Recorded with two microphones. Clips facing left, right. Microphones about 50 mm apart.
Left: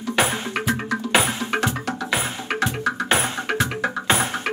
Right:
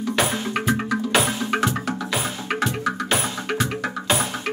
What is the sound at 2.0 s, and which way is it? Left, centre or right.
Music, left.